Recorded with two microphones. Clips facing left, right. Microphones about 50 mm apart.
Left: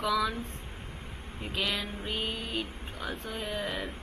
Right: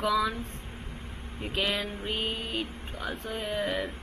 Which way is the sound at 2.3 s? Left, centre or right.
Right.